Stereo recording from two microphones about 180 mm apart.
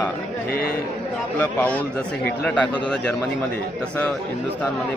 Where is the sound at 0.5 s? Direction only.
60° left (ahead or behind).